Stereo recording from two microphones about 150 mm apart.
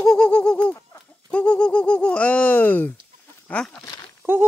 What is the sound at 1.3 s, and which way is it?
Speech, 5° left (ahead or behind).